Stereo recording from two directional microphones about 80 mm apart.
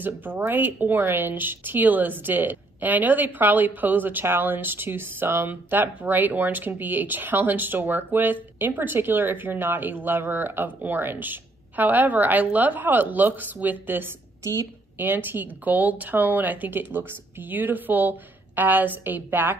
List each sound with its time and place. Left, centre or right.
0.0 s speech: right
14.4 s a woman's voice: right
15.0 s speech: right